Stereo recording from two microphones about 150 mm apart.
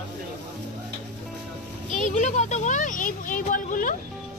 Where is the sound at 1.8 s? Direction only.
55° left (ahead or behind).